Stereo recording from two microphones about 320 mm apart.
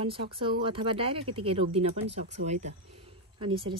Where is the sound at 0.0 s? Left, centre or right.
Centre.